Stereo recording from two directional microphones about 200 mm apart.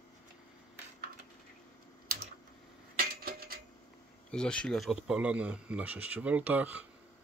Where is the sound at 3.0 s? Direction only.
50° right (ahead or behind).